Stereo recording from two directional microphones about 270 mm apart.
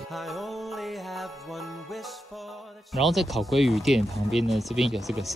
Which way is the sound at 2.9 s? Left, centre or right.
Centre.